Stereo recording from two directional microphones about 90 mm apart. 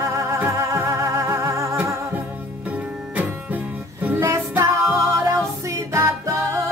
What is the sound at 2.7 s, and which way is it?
Music, 20° right (ahead or behind).